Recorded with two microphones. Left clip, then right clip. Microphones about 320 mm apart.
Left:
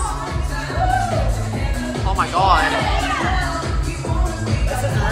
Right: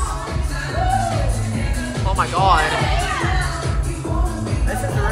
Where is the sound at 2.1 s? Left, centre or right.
Centre.